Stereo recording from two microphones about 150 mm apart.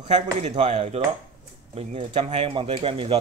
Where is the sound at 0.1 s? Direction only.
50° right (ahead or behind).